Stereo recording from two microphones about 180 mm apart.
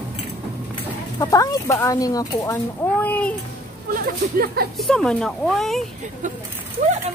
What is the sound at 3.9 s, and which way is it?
Speech, 55° right (ahead or behind).